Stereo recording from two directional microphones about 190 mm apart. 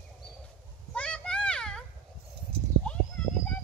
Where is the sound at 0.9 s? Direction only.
5° left (ahead or behind).